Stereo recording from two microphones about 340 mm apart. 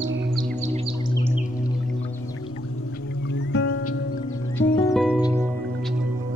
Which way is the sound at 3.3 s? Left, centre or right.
Left.